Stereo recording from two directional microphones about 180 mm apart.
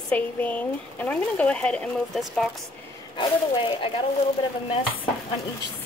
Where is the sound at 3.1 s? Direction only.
25° left (ahead or behind).